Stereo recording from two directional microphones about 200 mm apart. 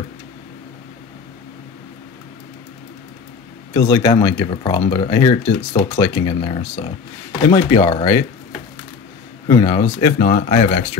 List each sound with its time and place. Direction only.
3.7 s speech: 20° left (ahead or behind)
9.5 s speech: 20° left (ahead or behind)